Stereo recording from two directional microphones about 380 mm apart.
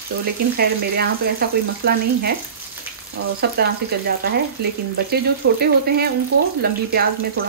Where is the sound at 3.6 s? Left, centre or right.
Right.